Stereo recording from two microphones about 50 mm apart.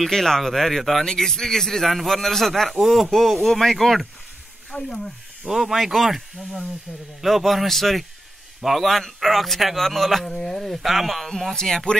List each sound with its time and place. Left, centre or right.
0.0 s speech: centre
4.6 s speech: centre
5.4 s speech: centre
11.5 s speech: centre